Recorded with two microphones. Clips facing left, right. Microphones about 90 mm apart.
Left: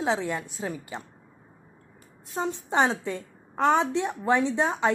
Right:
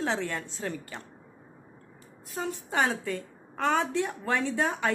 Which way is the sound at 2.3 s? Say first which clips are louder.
Left 4 dB; 25° left (ahead or behind).